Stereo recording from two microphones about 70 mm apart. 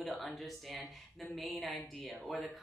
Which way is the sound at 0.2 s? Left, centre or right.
Centre.